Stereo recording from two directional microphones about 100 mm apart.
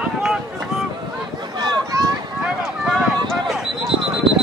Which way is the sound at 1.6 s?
40° right (ahead or behind).